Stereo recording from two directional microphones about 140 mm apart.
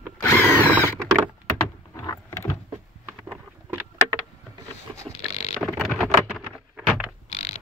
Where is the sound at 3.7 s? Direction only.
15° right (ahead or behind).